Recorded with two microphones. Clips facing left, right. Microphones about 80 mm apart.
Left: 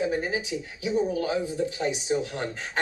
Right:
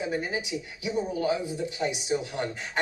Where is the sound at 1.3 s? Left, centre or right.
Left.